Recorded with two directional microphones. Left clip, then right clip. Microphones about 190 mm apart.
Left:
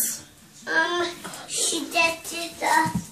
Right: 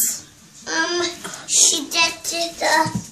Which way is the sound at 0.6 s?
20° right (ahead or behind).